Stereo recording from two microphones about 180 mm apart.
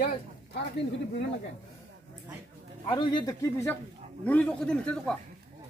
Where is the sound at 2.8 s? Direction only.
25° left (ahead or behind); by 5.1 s 5° left (ahead or behind).